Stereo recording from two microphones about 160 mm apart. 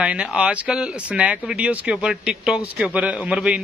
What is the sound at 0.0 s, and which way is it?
Speech, 5° right (ahead or behind).